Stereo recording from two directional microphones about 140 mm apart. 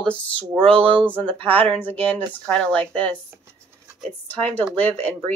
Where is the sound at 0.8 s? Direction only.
40° right (ahead or behind).